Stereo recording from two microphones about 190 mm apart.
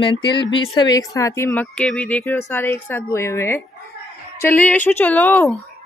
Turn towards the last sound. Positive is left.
turn(degrees=10)  # may be behind; listen again after turning